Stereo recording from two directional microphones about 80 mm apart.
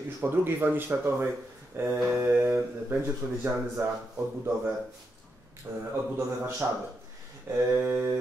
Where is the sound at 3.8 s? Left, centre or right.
Right.